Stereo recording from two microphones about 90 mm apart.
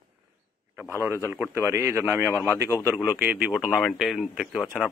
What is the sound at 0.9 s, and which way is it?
A man's voice, 30° right (ahead or behind).